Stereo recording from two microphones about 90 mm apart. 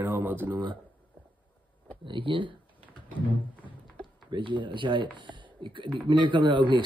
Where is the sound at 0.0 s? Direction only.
20° right (ahead or behind).